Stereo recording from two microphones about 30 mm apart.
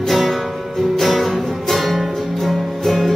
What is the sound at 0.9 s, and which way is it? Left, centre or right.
Music, centre.